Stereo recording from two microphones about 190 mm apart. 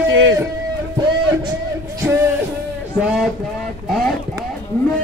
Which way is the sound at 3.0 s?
5° right (ahead or behind).